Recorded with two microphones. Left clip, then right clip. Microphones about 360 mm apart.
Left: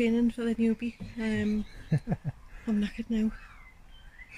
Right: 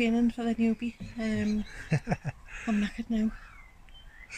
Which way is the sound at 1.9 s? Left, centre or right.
Right.